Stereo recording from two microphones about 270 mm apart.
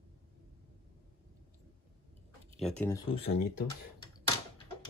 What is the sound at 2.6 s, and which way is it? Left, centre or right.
Speech, centre.